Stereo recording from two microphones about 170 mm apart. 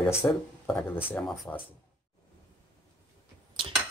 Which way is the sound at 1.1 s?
5° left (ahead or behind).